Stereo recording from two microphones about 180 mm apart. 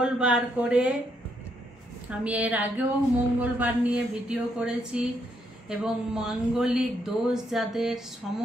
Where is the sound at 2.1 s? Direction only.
10° right (ahead or behind).